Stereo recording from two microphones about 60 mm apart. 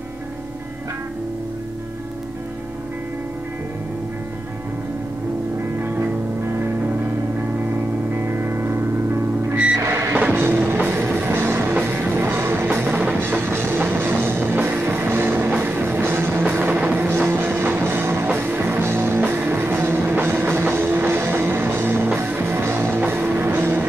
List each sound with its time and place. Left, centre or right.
8.3 s music: right
9.8 s music: right
10.3 s music: right